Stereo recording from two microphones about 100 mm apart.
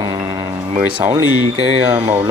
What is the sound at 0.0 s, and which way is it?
Music, 45° right (ahead or behind).